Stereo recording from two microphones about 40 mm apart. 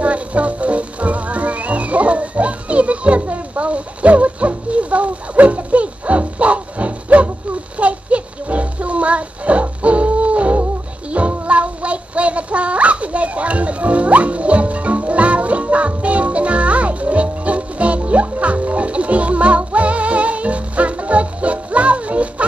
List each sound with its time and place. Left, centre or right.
0.0 s music: right